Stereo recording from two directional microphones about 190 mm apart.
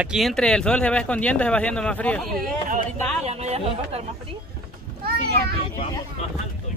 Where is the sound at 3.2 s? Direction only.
35° right (ahead or behind).